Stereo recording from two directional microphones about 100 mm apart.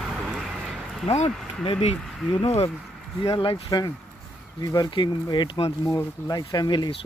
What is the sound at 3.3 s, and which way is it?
Speech, 60° left (ahead or behind).